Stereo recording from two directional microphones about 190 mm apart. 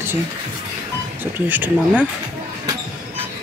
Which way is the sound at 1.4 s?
10° right (ahead or behind).